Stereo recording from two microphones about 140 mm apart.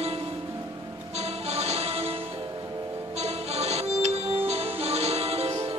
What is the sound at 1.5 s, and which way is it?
Music, 50° right (ahead or behind).